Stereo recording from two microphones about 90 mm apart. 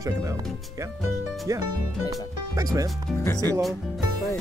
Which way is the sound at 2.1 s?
40° right (ahead or behind).